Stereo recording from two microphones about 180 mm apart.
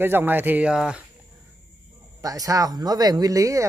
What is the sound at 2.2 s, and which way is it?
Speech, 20° right (ahead or behind).